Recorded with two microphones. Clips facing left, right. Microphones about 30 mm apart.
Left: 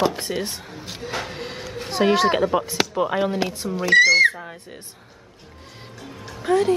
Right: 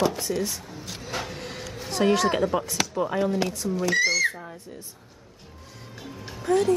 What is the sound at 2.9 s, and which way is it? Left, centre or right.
Speech, left.